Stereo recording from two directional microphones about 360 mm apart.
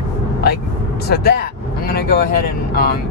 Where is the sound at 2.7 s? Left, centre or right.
Left.